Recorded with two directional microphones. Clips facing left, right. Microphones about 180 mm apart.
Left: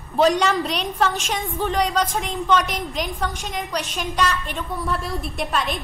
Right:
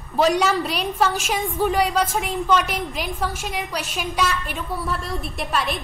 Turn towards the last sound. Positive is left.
turn(degrees=0)  # may be behind; listen again after turning